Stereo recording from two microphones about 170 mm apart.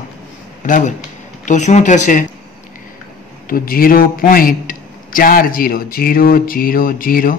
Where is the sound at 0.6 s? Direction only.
50° left (ahead or behind).